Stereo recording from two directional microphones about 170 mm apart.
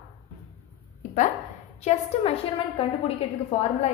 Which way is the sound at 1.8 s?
35° left (ahead or behind).